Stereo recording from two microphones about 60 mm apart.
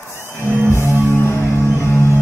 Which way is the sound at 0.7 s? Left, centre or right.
Left.